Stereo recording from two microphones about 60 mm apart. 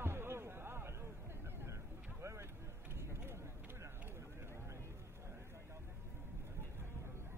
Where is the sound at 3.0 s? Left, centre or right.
Right.